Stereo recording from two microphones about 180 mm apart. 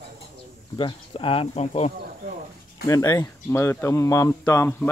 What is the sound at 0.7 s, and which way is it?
Speech, 30° left (ahead or behind).